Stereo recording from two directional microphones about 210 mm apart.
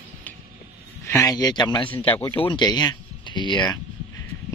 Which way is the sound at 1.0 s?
15° left (ahead or behind).